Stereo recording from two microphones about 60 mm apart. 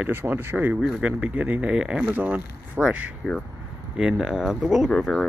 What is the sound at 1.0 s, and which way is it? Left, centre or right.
Speech, right.